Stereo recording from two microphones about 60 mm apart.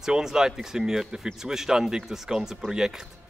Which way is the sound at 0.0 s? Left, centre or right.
Centre.